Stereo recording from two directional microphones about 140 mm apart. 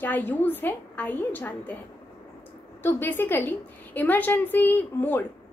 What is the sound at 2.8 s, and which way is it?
A woman's voice, 15° left (ahead or behind).